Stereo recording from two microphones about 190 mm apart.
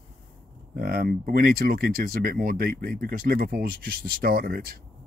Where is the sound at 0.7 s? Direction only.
50° right (ahead or behind).